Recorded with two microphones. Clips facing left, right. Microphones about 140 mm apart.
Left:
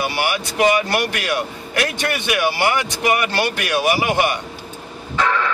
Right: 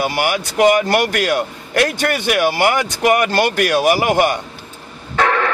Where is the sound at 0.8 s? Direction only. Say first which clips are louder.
Right 5 dB; 40° right (ahead or behind).